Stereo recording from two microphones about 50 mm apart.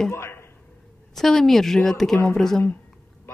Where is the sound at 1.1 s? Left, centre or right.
Centre.